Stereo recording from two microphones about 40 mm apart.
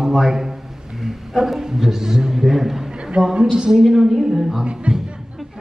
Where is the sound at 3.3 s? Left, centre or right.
Right.